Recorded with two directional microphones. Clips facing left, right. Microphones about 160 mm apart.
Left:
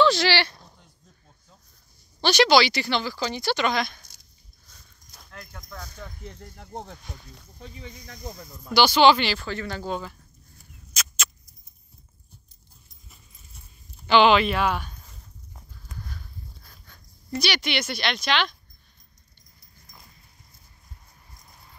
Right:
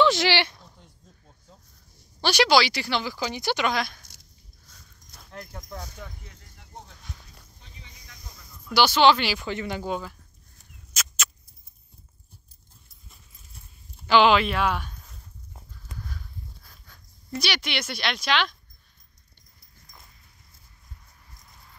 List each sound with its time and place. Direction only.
0.0 s a sound: 20° right (ahead or behind)
2.2 s speech: 5° right (ahead or behind)
5.3 s speech: 30° right (ahead or behind)
6.0 s speech: 10° right (ahead or behind)
6.4 s speech: 50° left (ahead or behind)
8.3 s speech: 45° left (ahead or behind)
8.7 s speech: centre (ahead or behind)
9.3 s speech: 15° right (ahead or behind)
10.9 s a sound: 5° right (ahead or behind)
14.0 s a sound: centre (ahead or behind)
16.6 s speech: centre (ahead or behind)